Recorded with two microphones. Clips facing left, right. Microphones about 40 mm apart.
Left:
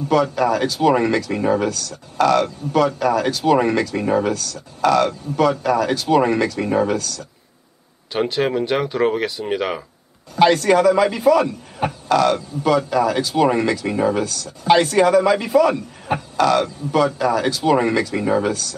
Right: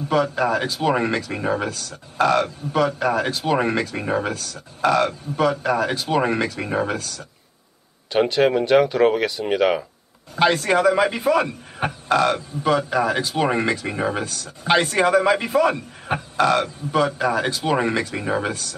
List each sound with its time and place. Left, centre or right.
0.1 s speech: right
1.7 s a man's voice: right
4.3 s speech: right
8.1 s speech: centre
10.4 s a man's voice: centre
14.2 s a man's voice: right; by 18.5 s centre
18.5 s speech: right